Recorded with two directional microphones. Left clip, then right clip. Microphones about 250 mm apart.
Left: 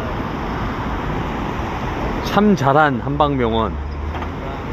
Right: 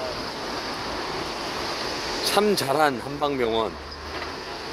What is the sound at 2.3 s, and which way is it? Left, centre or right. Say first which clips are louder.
Speech: left 6 dB; centre.